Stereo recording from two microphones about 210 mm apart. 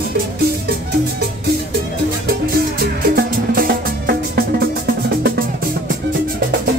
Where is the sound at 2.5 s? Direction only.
45° right (ahead or behind).